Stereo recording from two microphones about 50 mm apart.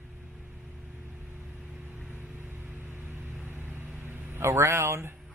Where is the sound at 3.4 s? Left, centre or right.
Right.